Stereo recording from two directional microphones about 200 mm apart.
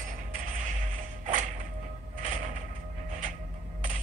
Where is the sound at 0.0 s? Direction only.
40° right (ahead or behind).